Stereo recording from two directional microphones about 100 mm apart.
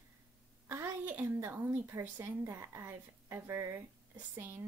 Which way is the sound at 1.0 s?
20° right (ahead or behind).